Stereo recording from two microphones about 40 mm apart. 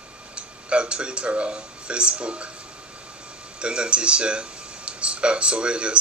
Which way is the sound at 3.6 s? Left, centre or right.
Right.